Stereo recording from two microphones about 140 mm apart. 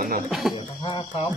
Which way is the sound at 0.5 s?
35° left (ahead or behind).